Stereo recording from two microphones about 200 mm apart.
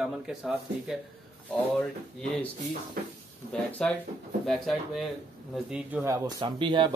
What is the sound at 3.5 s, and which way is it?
Speech, 5° left (ahead or behind).